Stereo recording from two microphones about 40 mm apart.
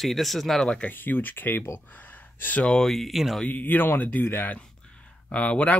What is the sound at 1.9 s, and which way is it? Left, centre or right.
Gasp, left.